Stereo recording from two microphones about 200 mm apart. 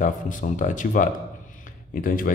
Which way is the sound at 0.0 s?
40° left (ahead or behind).